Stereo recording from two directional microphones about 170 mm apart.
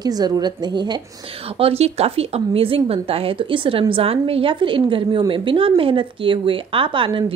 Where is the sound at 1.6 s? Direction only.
35° right (ahead or behind).